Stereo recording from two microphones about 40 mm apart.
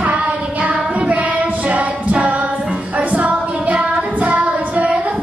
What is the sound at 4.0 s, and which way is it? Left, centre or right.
Child singing, right.